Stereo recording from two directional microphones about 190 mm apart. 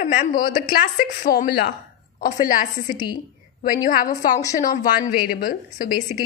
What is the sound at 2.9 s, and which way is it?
Speech, 20° left (ahead or behind).